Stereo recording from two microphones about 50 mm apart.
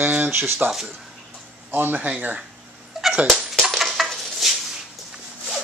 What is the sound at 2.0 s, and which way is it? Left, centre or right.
Speech, right.